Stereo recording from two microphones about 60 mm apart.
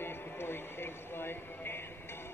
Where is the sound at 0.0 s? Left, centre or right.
Left.